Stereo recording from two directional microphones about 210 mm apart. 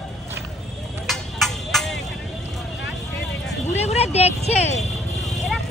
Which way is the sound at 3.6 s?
30° left (ahead or behind).